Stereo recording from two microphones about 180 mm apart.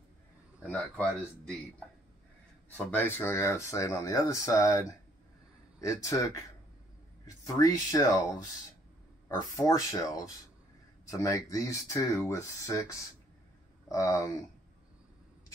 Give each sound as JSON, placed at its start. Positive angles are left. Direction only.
{"t": 0.6, "sound": "a man's voice", "side_deg": 10}
{"t": 2.7, "sound": "speech", "side_deg": 10}
{"t": 5.8, "sound": "speech", "side_deg": 15}
{"t": 9.3, "sound": "speech", "side_deg": 20}
{"t": 13.8, "sound": "speech", "side_deg": 20}